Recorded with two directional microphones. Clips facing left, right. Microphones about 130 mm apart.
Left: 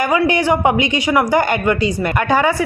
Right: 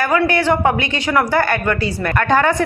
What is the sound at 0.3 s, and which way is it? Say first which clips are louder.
A woman's voice: left 1 dB; 15° left (ahead or behind).